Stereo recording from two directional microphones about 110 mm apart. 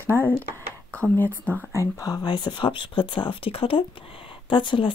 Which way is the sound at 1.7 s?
30° left (ahead or behind).